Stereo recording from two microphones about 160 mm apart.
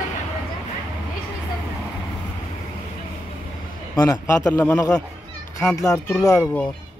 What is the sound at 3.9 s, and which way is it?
A man's voice, 15° left (ahead or behind).